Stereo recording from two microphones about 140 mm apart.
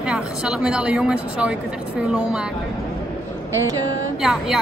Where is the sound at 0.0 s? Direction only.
5° right (ahead or behind).